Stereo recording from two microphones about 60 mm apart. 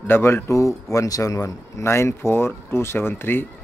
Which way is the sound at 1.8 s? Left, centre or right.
Left.